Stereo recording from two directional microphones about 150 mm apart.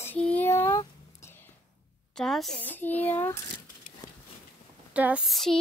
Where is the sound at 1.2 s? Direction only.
15° left (ahead or behind).